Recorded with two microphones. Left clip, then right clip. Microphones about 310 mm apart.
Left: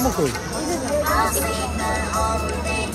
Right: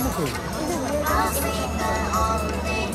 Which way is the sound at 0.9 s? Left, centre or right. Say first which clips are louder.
Left 3 dB; left.